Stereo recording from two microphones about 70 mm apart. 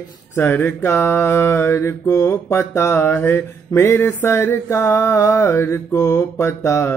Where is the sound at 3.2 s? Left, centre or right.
Left.